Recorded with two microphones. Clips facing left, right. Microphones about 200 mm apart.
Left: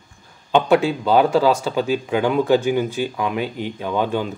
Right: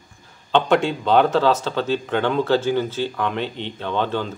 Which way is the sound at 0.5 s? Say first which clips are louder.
Left 2 dB; 10° left (ahead or behind).